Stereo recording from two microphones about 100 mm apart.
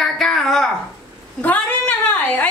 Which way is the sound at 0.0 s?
5° left (ahead or behind).